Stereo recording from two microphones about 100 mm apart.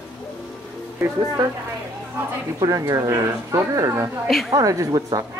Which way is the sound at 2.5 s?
35° right (ahead or behind).